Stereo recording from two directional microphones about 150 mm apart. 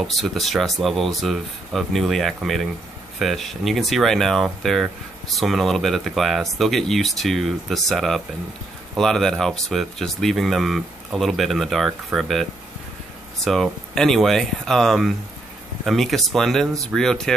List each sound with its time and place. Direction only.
0.0 s speech: centre (ahead or behind)